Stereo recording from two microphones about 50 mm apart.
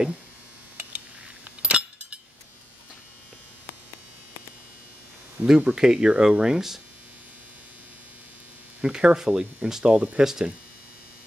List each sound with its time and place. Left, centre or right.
1.6 s a sound: centre
5.4 s speech: centre
8.8 s speech: right
9.9 s speech: right
10.2 s speech: centre